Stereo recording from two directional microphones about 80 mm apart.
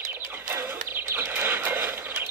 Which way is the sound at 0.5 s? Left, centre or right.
Right.